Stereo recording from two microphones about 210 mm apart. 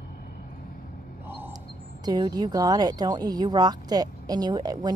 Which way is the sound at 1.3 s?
10° right (ahead or behind).